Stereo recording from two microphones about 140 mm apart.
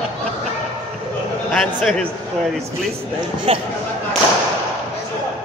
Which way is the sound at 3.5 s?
40° right (ahead or behind).